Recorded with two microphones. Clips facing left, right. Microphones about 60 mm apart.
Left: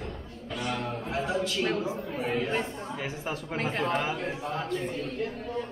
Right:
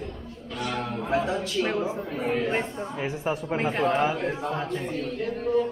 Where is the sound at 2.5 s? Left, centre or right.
Right.